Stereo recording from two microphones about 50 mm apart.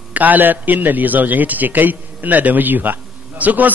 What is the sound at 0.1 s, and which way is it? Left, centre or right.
A man's voice, right.